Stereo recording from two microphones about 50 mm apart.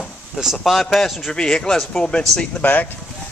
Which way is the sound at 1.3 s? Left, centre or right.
Centre.